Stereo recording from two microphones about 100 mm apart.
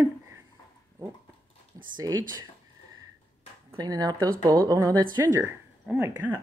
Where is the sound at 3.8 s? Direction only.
40° right (ahead or behind).